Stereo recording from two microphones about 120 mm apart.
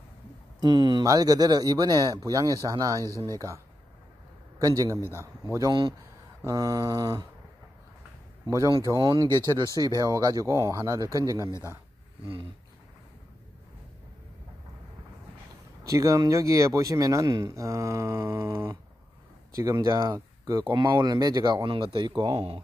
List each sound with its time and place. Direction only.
0.6 s speech: 35° right (ahead or behind)
8.5 s speech: 30° right (ahead or behind)
15.8 s speech: 25° right (ahead or behind)
20.1 s speech: 40° right (ahead or behind)